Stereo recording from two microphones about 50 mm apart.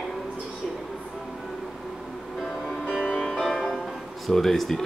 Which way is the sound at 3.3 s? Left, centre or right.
Centre.